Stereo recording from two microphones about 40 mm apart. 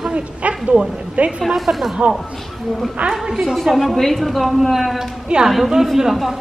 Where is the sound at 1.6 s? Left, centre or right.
Centre.